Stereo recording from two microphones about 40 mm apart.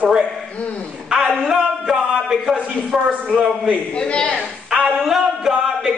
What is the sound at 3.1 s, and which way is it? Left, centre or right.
Speech, right.